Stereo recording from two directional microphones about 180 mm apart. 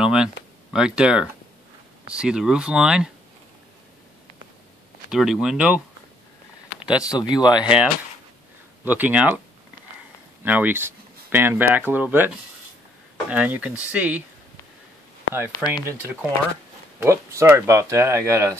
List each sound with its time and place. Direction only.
0.0 s speech: 5° right (ahead or behind)
5.1 s speech: centre (ahead or behind)
6.8 s a sound: 25° left (ahead or behind)
7.2 s speech: 25° left (ahead or behind)
7.6 s speech: 5° right (ahead or behind)
10.4 s speech: 10° right (ahead or behind)
13.3 s speech: 10° right (ahead or behind)
15.8 s speech: 15° right (ahead or behind)